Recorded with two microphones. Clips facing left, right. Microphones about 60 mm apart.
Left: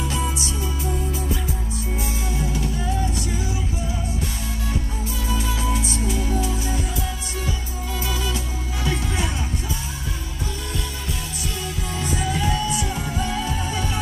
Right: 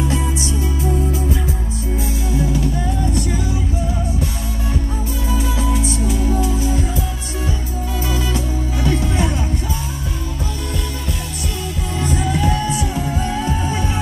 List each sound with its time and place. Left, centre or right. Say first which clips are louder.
0.1 s music: right 4 dB; right
5.3 s music: right 4 dB; right
8.8 s music: right 5 dB; right
12.0 s music: right 5 dB; right